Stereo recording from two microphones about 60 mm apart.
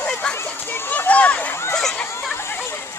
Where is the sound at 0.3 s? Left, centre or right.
Left.